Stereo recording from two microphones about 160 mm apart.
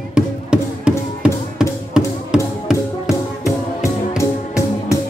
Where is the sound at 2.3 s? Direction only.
5° right (ahead or behind).